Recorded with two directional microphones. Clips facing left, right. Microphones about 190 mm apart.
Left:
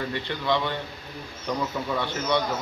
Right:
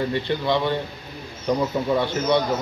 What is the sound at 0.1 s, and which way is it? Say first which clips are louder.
A man's voice: right 4 dB; 35° right (ahead or behind).